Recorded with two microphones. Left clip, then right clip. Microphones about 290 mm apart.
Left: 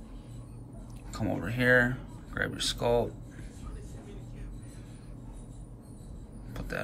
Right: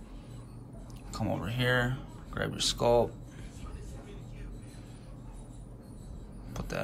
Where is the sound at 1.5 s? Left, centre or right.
Centre.